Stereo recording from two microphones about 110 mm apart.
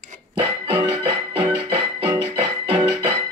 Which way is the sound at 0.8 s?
50° right (ahead or behind).